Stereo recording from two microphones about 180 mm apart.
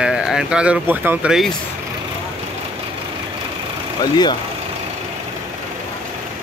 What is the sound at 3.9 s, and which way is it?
Speech, 20° left (ahead or behind).